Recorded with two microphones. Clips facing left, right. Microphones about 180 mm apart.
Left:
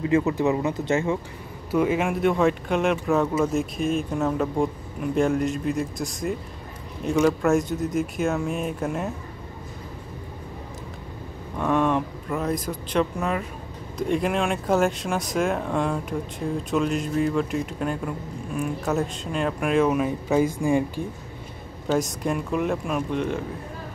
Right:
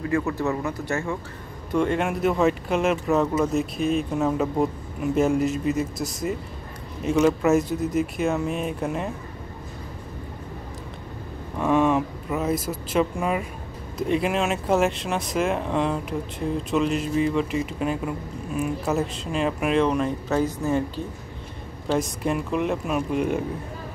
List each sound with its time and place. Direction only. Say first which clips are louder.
0.0 s speech: left 3 dB; 20° left (ahead or behind)
1.7 s speech: left 1 dB; 5° left (ahead or behind)
11.5 s speech: right 2 dB; 5° right (ahead or behind); by 21.0 s 10° left (ahead or behind)
21.9 s speech: even; centre (ahead or behind)